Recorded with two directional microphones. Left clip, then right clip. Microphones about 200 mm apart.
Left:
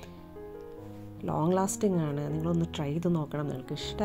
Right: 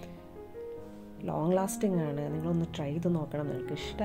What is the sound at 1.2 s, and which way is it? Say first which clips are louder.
Speech: left 1 dB; 25° left (ahead or behind).